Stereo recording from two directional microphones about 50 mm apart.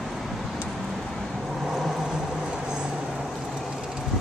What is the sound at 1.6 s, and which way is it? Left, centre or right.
Vehicle, centre.